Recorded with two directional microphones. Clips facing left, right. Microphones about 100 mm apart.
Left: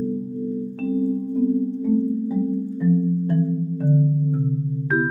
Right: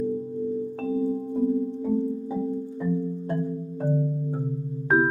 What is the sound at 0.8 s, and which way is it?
Music, 25° right (ahead or behind).